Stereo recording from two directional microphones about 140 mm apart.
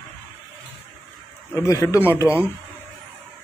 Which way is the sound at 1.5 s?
20° left (ahead or behind).